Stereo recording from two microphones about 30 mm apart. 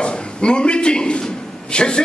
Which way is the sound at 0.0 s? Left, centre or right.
Left.